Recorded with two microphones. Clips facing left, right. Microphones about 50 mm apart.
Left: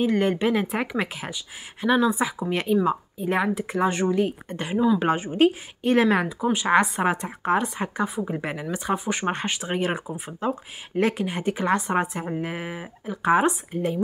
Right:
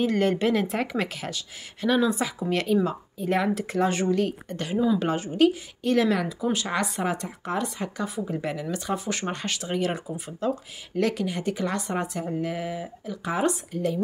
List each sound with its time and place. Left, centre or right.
0.0 s speech: centre
4.2 s speech: centre
6.4 s speech: left
6.7 s speech: left